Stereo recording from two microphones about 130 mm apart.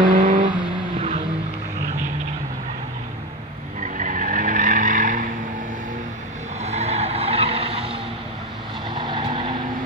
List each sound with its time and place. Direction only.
0.1 s vehicle: 90° right
3.8 s vehicle: 80° right
6.6 s vehicle: 55° right (ahead or behind); by 9.6 s 40° right (ahead or behind)